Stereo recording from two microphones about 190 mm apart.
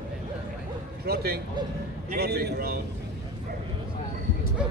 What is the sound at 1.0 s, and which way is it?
A man's voice, 55° right (ahead or behind).